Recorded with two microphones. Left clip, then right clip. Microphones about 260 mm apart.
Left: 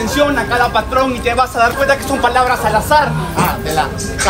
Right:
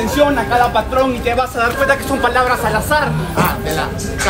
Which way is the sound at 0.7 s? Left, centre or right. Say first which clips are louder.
Left 1 dB; left.